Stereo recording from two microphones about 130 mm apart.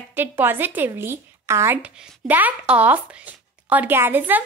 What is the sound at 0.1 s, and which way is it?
A woman's voice, 15° right (ahead or behind).